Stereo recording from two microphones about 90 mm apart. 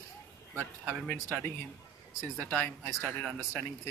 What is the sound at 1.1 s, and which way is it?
Speech, 15° left (ahead or behind).